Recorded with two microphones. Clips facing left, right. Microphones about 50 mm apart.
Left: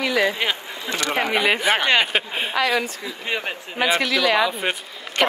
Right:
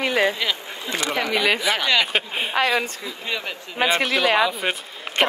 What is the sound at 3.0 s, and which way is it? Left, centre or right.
Speech, left.